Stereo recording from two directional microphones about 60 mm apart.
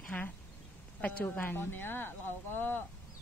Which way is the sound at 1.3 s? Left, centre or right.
Left.